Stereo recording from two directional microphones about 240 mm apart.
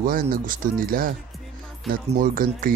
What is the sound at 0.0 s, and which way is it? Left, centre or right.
Speech, right.